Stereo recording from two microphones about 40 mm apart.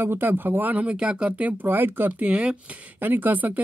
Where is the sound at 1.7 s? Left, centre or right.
Right.